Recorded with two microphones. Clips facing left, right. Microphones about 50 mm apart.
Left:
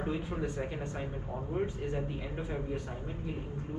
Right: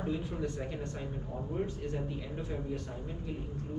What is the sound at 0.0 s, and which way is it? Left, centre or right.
Speech, left.